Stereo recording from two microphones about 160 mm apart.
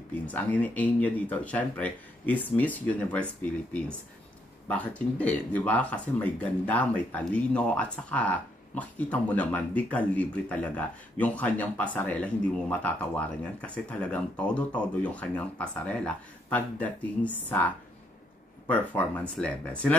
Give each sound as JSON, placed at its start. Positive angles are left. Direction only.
{"t": 0.3, "sound": "speech", "side_deg": 10}
{"t": 4.6, "sound": "speech", "side_deg": 10}